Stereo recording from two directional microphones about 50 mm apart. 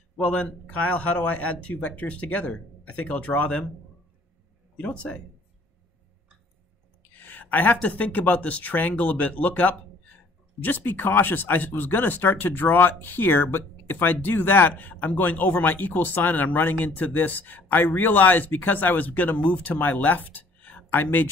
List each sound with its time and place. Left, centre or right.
0.2 s speech: left
4.7 s speech: left
7.2 s speech: left